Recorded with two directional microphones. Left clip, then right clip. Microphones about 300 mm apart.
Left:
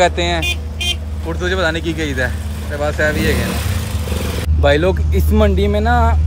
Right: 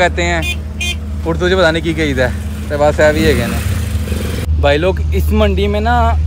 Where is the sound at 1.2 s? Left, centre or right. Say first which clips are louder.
Right 6 dB; centre.